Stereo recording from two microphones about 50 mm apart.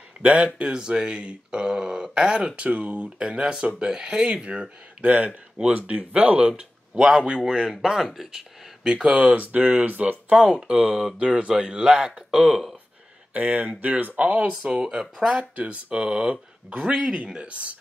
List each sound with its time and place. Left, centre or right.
0.2 s speech: right
7.8 s speech: centre
8.8 s speech: right
10.7 s speech: centre
13.3 s speech: right; by 15.4 s centre
15.5 s speech: right